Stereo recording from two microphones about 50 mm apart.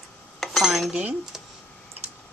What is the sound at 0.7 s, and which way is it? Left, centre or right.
Speech, centre.